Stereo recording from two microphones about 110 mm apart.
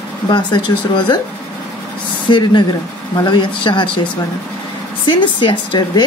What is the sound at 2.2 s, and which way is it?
A woman's voice, 45° left (ahead or behind).